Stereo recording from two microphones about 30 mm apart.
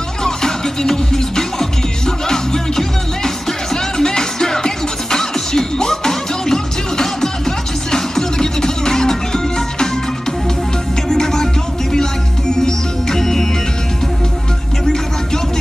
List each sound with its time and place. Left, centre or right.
0.2 s music: centre
11.1 s music: centre